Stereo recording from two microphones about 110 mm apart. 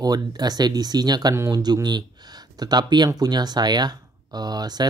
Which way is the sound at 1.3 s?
25° right (ahead or behind).